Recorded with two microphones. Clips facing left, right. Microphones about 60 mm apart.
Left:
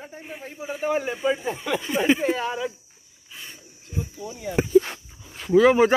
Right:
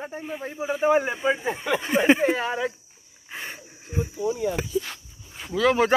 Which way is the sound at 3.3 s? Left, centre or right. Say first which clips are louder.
Right 7 dB; right.